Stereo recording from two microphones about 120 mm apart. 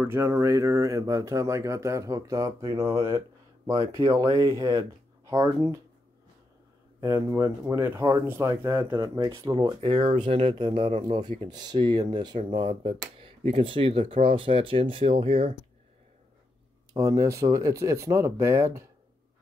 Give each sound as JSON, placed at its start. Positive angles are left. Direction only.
{"t": 0.0, "sound": "speech", "side_deg": -20}
{"t": 7.0, "sound": "speech", "side_deg": -25}
{"t": 9.0, "sound": "speech", "side_deg": -30}
{"t": 9.8, "sound": "speech", "side_deg": -50}
{"t": 16.9, "sound": "speech", "side_deg": -30}